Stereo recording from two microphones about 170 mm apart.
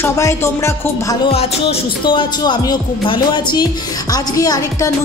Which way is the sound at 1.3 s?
35° left (ahead or behind).